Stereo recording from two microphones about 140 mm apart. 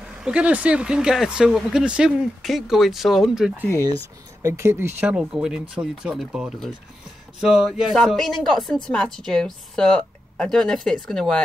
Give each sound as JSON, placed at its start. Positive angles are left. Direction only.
{"t": 0.2, "sound": "speech", "side_deg": -10}
{"t": 4.4, "sound": "speech", "side_deg": -20}
{"t": 5.1, "sound": "speech", "side_deg": -5}